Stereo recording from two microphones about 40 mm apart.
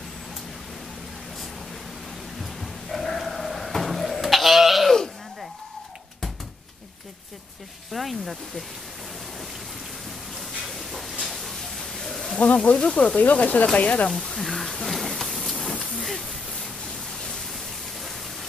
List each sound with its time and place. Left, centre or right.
2.6 s sheep: centre
7.9 s speech: centre
10.7 s a sound: centre
12.7 s speech: left
13.2 s speech: left
14.1 s a sound: centre
15.8 s hiss: centre